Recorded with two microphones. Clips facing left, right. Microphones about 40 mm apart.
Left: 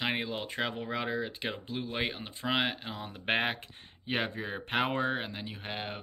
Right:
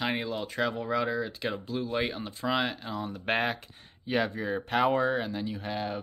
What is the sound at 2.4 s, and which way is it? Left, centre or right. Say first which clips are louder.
Speech: right 1 dB; left.